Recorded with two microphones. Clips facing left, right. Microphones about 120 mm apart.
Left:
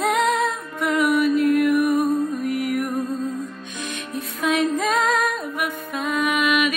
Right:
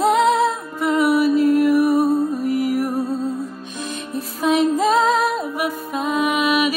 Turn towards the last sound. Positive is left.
turn(degrees=-35)  # may be behind; listen again after turning